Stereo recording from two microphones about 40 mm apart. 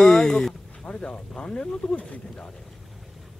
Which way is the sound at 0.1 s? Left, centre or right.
Centre.